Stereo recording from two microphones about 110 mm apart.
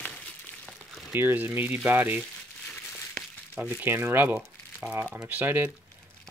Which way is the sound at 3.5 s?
20° right (ahead or behind).